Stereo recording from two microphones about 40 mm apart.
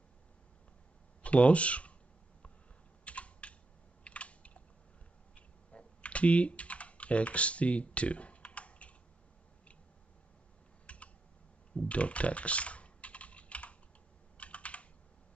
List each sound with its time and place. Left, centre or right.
1.2 s speech: left
3.1 s typing: left
4.0 s computer keyboard: left
10.9 s computer keyboard: left